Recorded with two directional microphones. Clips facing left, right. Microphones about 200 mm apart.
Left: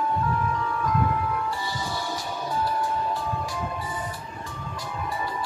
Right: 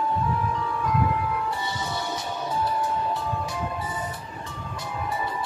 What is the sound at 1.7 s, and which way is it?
Music, 20° right (ahead or behind).